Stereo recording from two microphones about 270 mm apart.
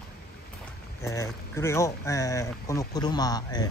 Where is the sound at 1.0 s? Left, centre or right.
Centre.